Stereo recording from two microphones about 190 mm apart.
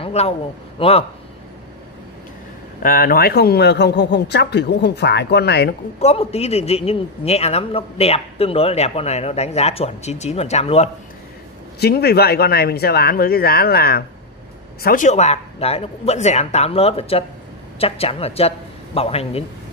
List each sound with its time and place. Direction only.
0.0 s a sound: 35° left (ahead or behind)
0.7 s a man's voice: 30° left (ahead or behind)
2.8 s speech: 50° left (ahead or behind)
5.9 s a man's voice: 35° left (ahead or behind)
11.8 s a man's voice: 55° left (ahead or behind); by 19.4 s 30° left (ahead or behind)